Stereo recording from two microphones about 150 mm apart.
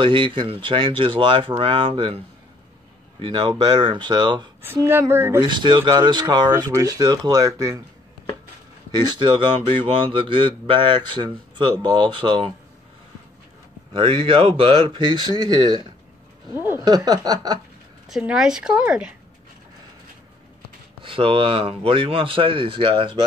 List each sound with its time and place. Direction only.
0.0 s speech: 35° right (ahead or behind)
4.6 s a woman's voice: 15° right (ahead or behind)
5.4 s speech: 30° right (ahead or behind)
8.9 s speech: 30° right (ahead or behind)
13.9 s speech: 35° right (ahead or behind)
18.0 s a woman's voice: 5° right (ahead or behind)
21.0 s speech: 35° right (ahead or behind)